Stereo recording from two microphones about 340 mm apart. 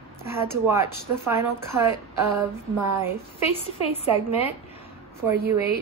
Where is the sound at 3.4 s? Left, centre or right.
Centre.